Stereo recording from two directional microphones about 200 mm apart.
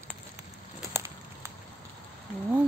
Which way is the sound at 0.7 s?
10° right (ahead or behind).